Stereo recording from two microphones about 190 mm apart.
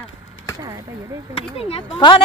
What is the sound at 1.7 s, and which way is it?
Speech, 30° left (ahead or behind).